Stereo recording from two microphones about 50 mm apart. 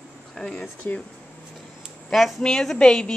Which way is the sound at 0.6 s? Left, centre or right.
Left.